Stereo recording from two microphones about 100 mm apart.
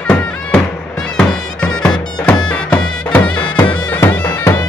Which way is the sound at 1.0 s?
5° left (ahead or behind).